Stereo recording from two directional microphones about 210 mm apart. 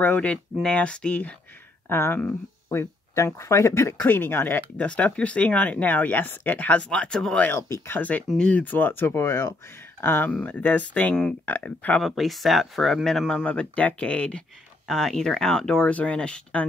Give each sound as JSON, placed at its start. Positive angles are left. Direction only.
{"t": 0.0, "sound": "speech", "side_deg": 5}